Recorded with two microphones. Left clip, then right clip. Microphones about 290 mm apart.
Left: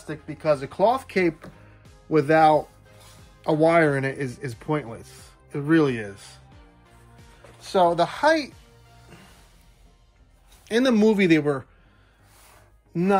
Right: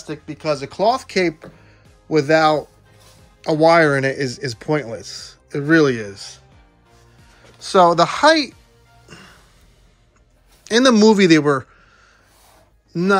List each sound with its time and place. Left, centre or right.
0.0 s speech: centre
3.6 s speech: centre
7.6 s speech: centre
10.6 s speech: centre
12.9 s speech: centre